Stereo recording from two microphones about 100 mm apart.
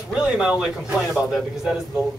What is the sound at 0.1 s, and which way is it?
A man's voice, 10° right (ahead or behind).